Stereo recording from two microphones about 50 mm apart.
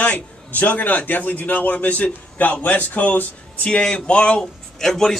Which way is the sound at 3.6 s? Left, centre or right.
Centre.